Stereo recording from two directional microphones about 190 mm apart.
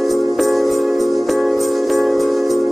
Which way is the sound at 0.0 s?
Centre (ahead or behind).